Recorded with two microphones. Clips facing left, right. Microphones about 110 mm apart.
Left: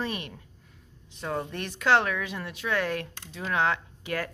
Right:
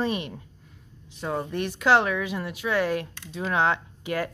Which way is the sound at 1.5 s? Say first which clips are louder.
Right 3 dB; 10° right (ahead or behind).